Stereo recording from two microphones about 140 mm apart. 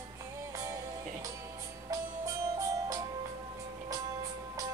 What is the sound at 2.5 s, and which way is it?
Music, 25° right (ahead or behind).